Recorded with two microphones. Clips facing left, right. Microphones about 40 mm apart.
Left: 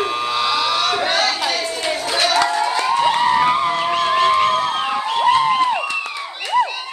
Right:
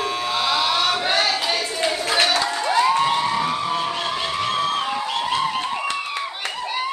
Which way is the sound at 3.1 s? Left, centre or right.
Left.